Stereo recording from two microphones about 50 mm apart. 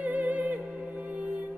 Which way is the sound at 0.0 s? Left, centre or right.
Right.